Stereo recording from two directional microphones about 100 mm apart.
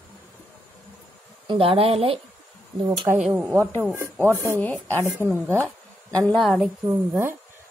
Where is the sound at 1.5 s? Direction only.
70° right (ahead or behind).